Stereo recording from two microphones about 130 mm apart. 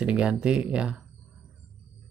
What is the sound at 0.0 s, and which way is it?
Speech, 10° right (ahead or behind).